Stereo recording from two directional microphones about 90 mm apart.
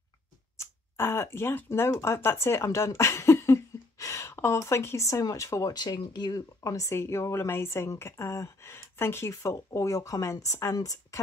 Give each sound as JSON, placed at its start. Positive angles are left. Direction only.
{"t": 0.6, "sound": "speech", "side_deg": 30}
{"t": 5.7, "sound": "speech", "side_deg": 45}